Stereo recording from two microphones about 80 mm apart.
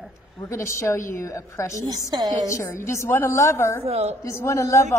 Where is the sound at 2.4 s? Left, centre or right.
Left.